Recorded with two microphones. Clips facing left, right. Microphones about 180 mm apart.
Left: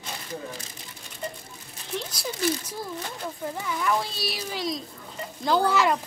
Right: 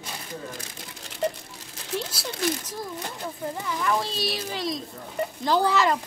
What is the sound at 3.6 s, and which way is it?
Speech, centre (ahead or behind).